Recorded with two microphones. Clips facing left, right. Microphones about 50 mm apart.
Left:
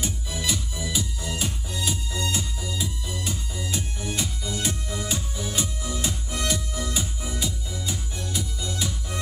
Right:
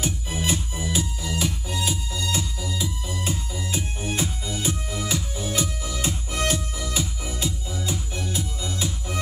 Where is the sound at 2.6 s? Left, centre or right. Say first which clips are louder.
Right 2 dB; right.